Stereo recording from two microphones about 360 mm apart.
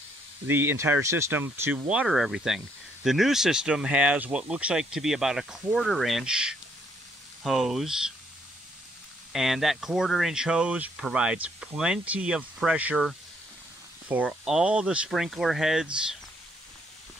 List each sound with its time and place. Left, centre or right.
0.5 s speech: centre
9.3 s speech: centre